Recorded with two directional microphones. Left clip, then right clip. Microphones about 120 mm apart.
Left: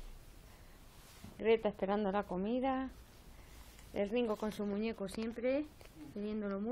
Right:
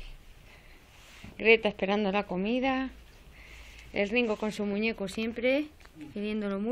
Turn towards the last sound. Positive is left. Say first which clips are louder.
# right 7 dB
turn(degrees=-30)  # may be behind; listen again after turning